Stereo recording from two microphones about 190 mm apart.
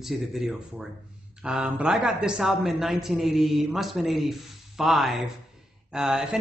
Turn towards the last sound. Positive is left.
turn(degrees=-5)  # may be behind; listen again after turning